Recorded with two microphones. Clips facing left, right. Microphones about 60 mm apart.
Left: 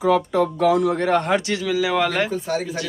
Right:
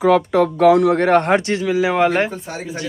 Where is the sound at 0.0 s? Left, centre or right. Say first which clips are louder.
Right 4 dB; right.